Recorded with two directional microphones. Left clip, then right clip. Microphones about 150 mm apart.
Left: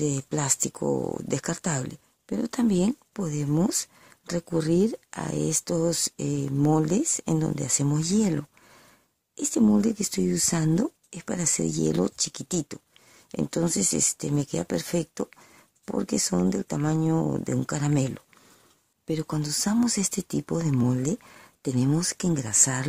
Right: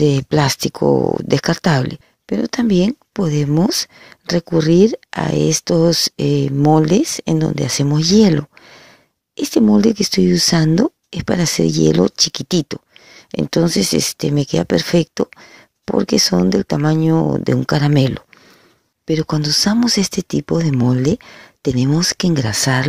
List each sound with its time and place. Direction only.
0.0 s speech: 30° right (ahead or behind)